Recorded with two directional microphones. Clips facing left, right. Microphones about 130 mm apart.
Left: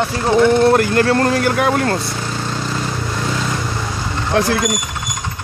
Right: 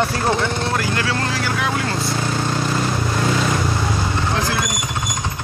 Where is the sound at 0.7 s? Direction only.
55° left (ahead or behind).